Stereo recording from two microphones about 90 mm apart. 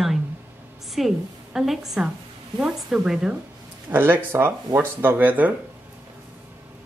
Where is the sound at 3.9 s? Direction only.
20° right (ahead or behind).